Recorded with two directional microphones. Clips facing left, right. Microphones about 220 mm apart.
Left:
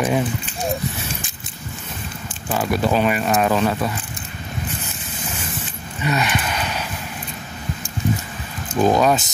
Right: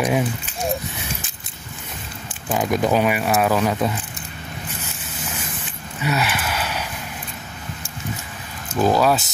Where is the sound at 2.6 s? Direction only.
15° right (ahead or behind).